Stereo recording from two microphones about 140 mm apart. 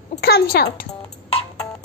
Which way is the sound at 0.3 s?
90° left.